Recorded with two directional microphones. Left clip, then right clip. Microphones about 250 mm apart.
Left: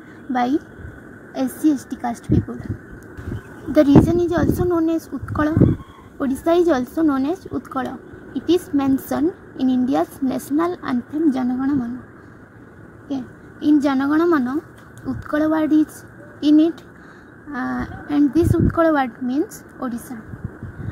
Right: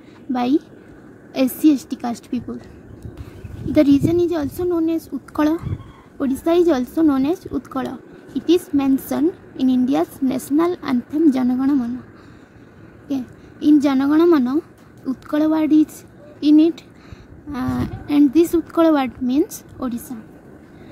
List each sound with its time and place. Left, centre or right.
0.3 s a woman's voice: centre
3.7 s a woman's voice: centre
13.1 s a woman's voice: centre